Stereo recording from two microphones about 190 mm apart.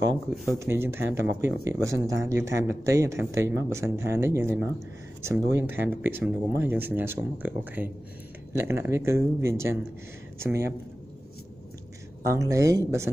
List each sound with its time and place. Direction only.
0.6 s speech: 15° right (ahead or behind)
12.3 s speech: 15° right (ahead or behind)